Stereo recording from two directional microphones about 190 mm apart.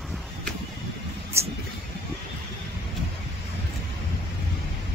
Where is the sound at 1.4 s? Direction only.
15° right (ahead or behind).